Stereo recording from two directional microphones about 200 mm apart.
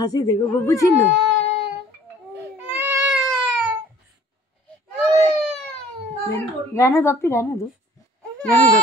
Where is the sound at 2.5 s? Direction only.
10° right (ahead or behind).